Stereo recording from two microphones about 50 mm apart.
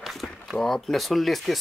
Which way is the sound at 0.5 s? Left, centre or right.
Centre.